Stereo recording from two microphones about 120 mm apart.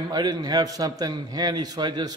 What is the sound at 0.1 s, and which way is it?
A man's voice, 35° right (ahead or behind).